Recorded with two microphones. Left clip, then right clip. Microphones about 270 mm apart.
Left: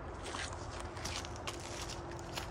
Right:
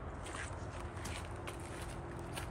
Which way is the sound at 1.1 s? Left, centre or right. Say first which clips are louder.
Left 3 dB; centre.